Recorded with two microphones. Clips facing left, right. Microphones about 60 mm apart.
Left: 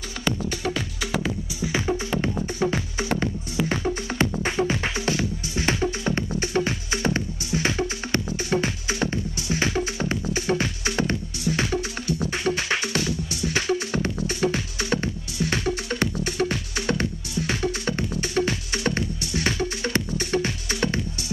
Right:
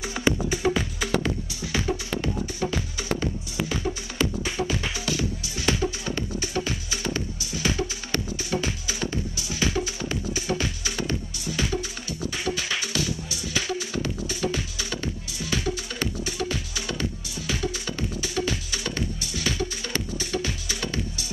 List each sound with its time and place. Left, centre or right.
0.5 s music: centre
2.0 s music: left